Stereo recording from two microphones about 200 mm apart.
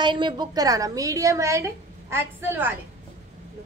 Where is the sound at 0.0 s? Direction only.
25° right (ahead or behind).